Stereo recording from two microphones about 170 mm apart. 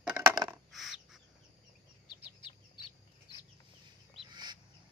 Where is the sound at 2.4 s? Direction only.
30° left (ahead or behind).